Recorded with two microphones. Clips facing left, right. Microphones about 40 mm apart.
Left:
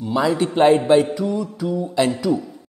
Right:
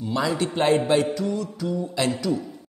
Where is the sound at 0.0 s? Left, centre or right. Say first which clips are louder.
Left 5 dB; centre.